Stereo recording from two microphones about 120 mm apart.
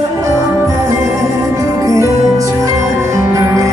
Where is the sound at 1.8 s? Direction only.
30° right (ahead or behind).